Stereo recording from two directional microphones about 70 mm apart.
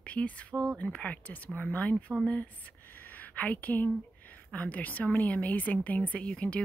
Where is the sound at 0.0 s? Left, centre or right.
Centre.